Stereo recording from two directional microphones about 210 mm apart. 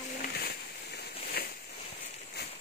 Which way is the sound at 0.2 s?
50° left (ahead or behind).